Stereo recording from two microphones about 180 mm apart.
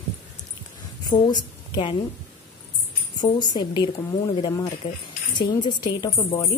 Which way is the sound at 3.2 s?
25° left (ahead or behind).